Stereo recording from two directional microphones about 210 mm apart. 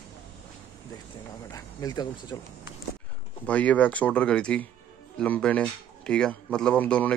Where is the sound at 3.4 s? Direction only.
5° left (ahead or behind).